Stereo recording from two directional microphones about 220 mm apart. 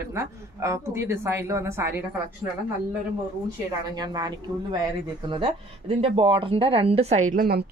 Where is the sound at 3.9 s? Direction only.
20° right (ahead or behind); by 7.7 s 45° right (ahead or behind).